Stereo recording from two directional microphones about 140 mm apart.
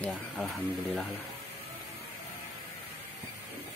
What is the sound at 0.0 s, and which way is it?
Speech, centre (ahead or behind).